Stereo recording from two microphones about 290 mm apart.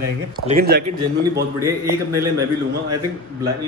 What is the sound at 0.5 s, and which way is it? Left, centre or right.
Speech, right.